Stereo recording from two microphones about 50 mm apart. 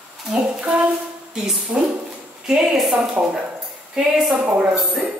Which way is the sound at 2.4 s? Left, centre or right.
Centre.